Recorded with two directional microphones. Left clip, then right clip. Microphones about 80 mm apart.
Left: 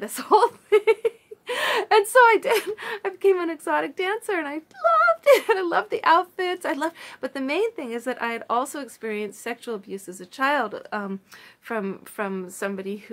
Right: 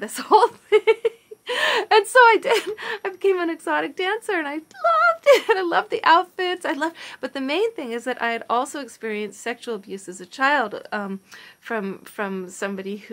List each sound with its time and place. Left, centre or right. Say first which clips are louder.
0.0 s speech: right 2 dB; centre